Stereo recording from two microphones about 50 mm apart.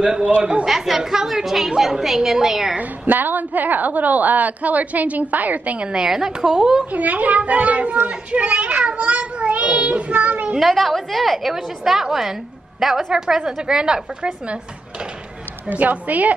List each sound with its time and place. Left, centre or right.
0.4 s a child's voice: centre
0.7 s a woman's voice: centre
2.8 s a woman's voice: right
5.9 s speech: centre
6.9 s a child's voice: right
10.6 s a woman's voice: centre
15.7 s a woman's voice: right